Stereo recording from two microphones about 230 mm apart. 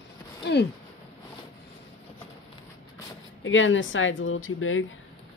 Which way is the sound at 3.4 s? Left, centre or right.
Left.